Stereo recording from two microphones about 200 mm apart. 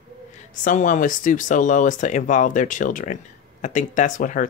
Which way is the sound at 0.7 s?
40° left (ahead or behind).